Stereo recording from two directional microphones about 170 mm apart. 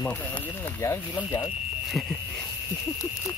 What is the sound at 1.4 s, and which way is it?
Speech, centre (ahead or behind).